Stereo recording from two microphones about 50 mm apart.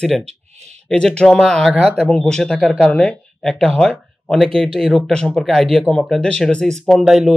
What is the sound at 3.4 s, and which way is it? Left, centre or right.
Speech, centre.